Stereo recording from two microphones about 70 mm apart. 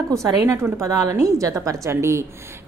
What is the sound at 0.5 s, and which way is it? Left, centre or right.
A woman's voice, right.